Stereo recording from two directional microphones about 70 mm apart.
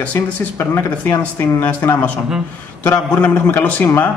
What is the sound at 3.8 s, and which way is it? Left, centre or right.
Speech, left.